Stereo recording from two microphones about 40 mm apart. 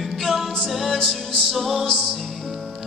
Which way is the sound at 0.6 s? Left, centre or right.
Centre.